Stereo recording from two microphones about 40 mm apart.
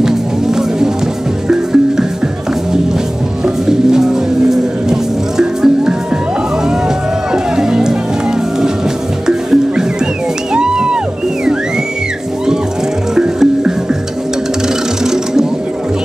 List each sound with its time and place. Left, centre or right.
1.5 s music: centre
3.4 s music: centre
7.5 s music: centre
9.3 s music: centre
13.1 s music: centre